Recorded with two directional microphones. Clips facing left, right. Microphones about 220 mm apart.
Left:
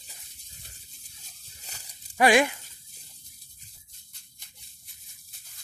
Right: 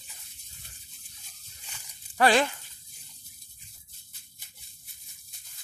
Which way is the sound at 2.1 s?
10° left (ahead or behind).